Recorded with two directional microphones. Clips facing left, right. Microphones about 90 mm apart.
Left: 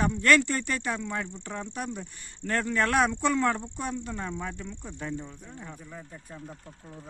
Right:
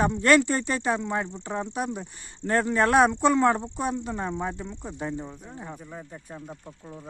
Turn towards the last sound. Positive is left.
turn(degrees=-20)  # may be behind; listen again after turning